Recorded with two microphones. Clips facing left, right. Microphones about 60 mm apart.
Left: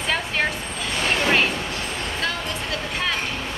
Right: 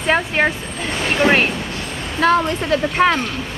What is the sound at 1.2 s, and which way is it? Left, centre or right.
Speech, right.